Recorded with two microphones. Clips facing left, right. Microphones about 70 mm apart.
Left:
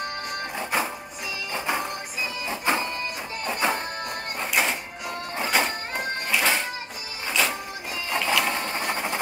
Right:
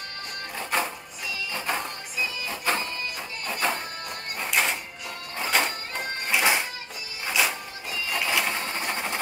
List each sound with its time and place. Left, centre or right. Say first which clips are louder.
0.6 s music: even; centre
2.1 s music: right 2 dB; left
4.4 s music: left 1 dB; centre
6.3 s a sound: right 1 dB; centre
7.2 s music: even; centre
7.9 s printer: left 2 dB; left
8.5 s sewing machine: left 2 dB; centre